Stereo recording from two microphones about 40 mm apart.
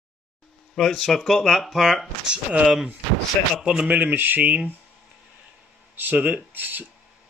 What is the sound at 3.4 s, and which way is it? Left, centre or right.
Speech, left.